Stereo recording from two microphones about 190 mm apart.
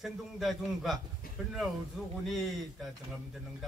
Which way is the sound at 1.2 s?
50° left (ahead or behind).